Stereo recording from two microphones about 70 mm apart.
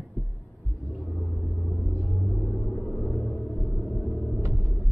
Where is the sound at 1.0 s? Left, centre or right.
Centre.